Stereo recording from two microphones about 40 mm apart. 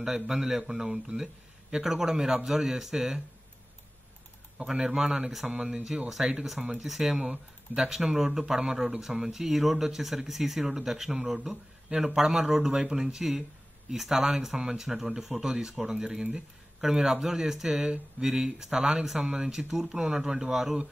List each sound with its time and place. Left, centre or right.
0.0 s speech: centre
4.6 s speech: centre
6.0 s speech: centre
6.6 s speech: centre
13.9 s speech: centre